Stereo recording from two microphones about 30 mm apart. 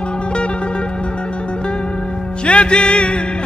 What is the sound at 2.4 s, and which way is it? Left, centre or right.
Music, left.